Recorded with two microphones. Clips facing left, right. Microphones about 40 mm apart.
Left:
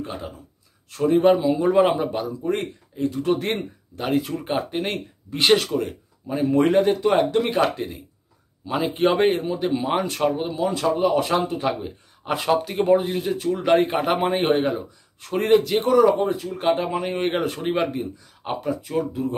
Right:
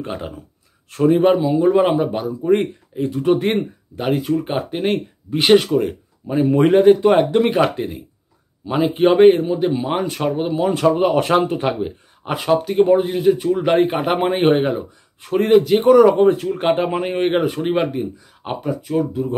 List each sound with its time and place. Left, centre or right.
0.0 s speech: right
1.0 s speech: centre
2.5 s speech: right
4.1 s speech: centre; by 7.6 s right
7.6 s speech: centre
10.6 s speech: right
12.3 s speech: centre; by 14.8 s right
15.3 s speech: centre
16.1 s speech: right
17.2 s speech: centre